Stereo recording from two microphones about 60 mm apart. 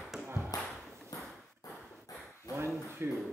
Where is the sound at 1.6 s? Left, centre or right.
Left.